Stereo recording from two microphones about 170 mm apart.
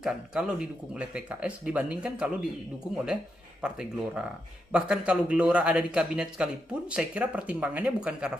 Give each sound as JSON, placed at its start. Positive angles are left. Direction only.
{"t": 0.0, "sound": "a man's voice", "side_deg": -5}
{"t": 3.6, "sound": "a man's voice", "side_deg": -5}